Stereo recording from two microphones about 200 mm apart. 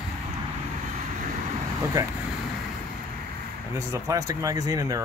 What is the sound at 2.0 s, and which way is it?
Speech, 20° right (ahead or behind).